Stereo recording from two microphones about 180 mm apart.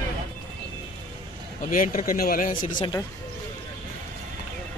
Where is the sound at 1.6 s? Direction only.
45° left (ahead or behind).